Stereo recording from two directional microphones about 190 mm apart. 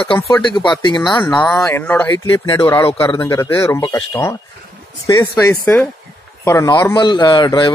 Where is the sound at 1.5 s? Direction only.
10° left (ahead or behind).